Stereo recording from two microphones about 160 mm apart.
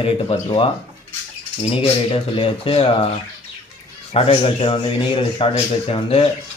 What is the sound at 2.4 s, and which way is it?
Speech, 35° left (ahead or behind).